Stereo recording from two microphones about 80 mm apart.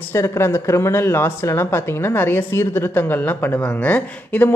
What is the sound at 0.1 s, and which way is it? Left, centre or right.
A woman's voice, left.